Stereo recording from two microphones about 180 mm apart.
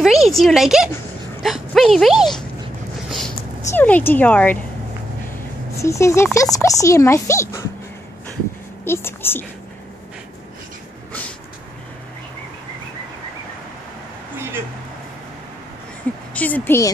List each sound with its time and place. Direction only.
0.0 s speech: centre (ahead or behind); by 7.6 s 15° left (ahead or behind)
8.8 s a woman's voice: 15° left (ahead or behind)
16.3 s a woman's voice: 10° left (ahead or behind)